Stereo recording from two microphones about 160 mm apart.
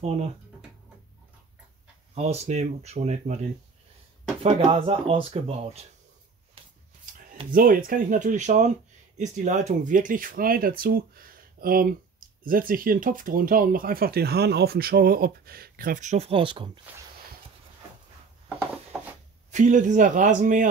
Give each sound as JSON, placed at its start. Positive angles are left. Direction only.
{"t": 2.1, "sound": "speech", "side_deg": -40}
{"t": 4.4, "sound": "speech", "side_deg": -35}
{"t": 7.5, "sound": "speech", "side_deg": -60}
{"t": 19.5, "sound": "speech", "side_deg": -50}